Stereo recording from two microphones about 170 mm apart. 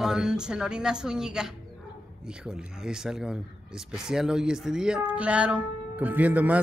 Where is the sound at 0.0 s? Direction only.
5° right (ahead or behind).